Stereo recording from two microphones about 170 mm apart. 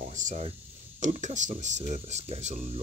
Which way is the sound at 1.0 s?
45° right (ahead or behind).